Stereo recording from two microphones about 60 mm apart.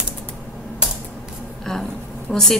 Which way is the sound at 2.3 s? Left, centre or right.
Centre.